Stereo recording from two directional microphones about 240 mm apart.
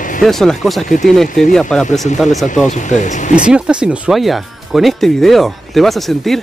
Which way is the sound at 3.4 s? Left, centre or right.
Centre.